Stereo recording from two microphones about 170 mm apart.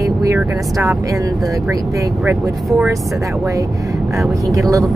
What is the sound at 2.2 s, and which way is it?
Speech, 10° right (ahead or behind).